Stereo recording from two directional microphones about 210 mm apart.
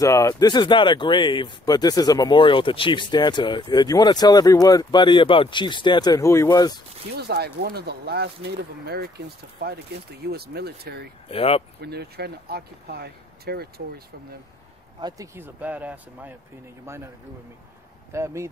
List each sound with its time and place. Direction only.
0.0 s speech: 15° left (ahead or behind)
7.2 s speech: 50° right (ahead or behind)
11.2 s speech: 30° left (ahead or behind)
11.8 s speech: 50° right (ahead or behind)
15.0 s speech: 20° right (ahead or behind)
18.1 s speech: 15° right (ahead or behind)